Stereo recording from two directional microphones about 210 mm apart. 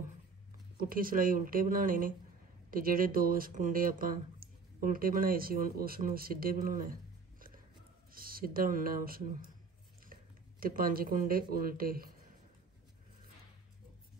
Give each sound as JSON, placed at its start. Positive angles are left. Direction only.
{"t": 0.7, "sound": "speech", "side_deg": -45}
{"t": 10.6, "sound": "speech", "side_deg": -45}